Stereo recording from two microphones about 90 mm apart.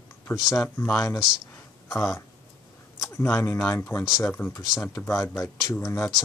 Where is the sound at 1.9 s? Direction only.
30° left (ahead or behind).